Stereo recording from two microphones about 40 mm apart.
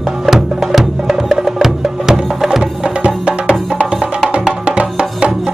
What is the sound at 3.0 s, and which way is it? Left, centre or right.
Music, right.